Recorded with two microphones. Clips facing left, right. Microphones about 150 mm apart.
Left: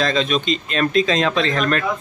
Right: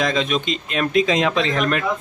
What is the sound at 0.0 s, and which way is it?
Speech, 15° right (ahead or behind).